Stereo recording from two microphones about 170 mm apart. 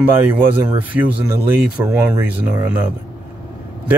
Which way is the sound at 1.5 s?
15° right (ahead or behind).